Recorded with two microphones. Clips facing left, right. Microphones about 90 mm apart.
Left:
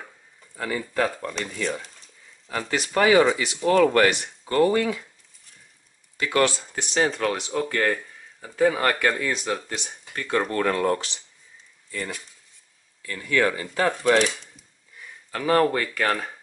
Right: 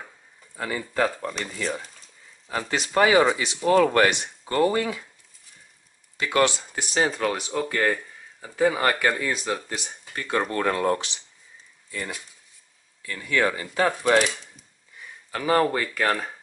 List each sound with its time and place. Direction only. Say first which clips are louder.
0.6 s speech: left 1 dB; 15° right (ahead or behind)
1.0 s speech: right 1 dB; 5° right (ahead or behind)
2.7 s speech: left 1 dB; 25° right (ahead or behind)
3.6 s speech: even; 10° right (ahead or behind)
3.9 s speech: left 1 dB; 20° right (ahead or behind)
6.1 s speech: even; 20° right (ahead or behind)
6.7 s speech: left 1 dB; 5° right (ahead or behind)
10.1 s speech: left 1 dB; 10° right (ahead or behind)
13.2 s speech: left 1 dB; 15° right (ahead or behind)
15.3 s speech: left 1 dB; 10° right (ahead or behind)